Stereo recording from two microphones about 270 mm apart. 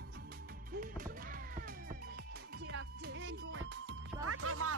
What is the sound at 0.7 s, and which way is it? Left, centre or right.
Music, right.